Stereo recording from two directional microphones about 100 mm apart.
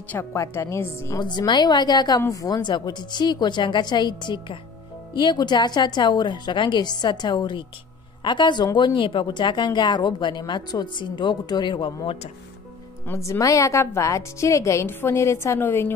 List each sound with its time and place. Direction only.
0.1 s a woman's voice: 25° left (ahead or behind)
1.2 s a woman's voice: 45° left (ahead or behind)
13.0 s a woman's voice: 30° left (ahead or behind)